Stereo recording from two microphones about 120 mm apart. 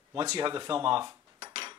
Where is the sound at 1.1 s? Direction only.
30° right (ahead or behind).